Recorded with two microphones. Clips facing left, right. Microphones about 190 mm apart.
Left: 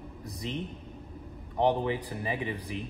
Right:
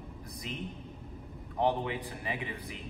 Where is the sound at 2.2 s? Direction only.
30° left (ahead or behind).